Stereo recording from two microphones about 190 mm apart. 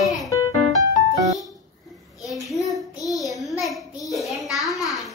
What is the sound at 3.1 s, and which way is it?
Child singing, centre (ahead or behind).